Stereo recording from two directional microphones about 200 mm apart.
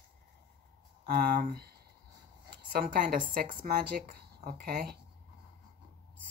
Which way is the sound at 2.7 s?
45° right (ahead or behind).